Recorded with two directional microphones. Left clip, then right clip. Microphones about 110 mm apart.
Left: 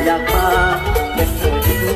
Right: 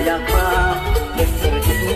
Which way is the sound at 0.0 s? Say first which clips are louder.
Left 3 dB; 55° right (ahead or behind).